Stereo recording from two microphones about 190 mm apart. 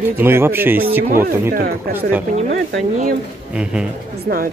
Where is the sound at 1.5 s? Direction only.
50° right (ahead or behind).